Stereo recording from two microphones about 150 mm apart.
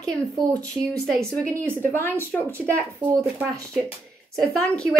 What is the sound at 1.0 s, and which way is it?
Speech, 5° left (ahead or behind).